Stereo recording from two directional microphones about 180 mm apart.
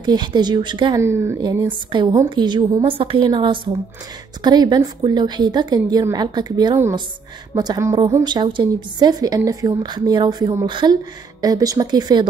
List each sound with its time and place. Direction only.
0.0 s a woman's voice: 25° right (ahead or behind)
1.0 s a woman's voice: 15° right (ahead or behind)